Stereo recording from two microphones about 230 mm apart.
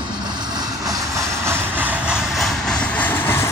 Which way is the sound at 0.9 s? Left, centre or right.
Centre.